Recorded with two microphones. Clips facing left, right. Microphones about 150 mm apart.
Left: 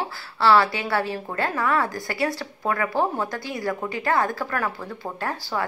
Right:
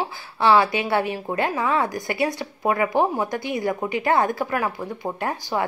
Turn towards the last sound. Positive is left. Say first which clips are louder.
# right 3 dB
turn(degrees=-20)  # may be behind; listen again after turning